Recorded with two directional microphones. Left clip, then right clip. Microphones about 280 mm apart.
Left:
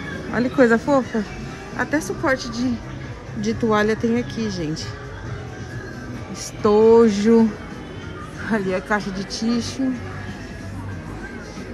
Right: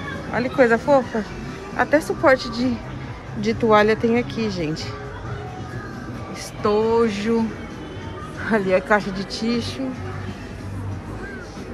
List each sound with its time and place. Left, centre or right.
0.3 s mantra: centre
1.8 s speech: centre
6.6 s mantra: centre
8.5 s speech: centre